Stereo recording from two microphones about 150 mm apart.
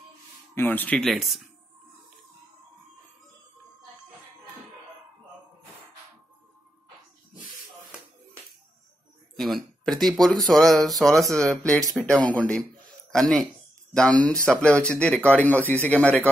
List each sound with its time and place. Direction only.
0.6 s speech: 10° left (ahead or behind)
9.4 s a sound: centre (ahead or behind)
10.4 s speech: centre (ahead or behind)